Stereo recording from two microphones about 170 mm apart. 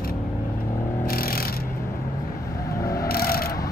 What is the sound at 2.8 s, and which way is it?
Vehicle, 20° left (ahead or behind).